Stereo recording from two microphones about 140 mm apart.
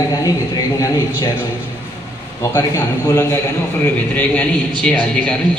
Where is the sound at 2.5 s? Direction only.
25° left (ahead or behind).